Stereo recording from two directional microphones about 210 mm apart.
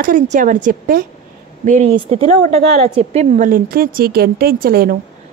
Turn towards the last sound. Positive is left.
turn(degrees=-45)  # may be behind; listen again after turning